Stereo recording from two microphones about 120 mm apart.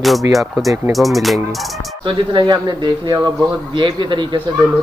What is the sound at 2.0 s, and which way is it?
Speech, 40° right (ahead or behind).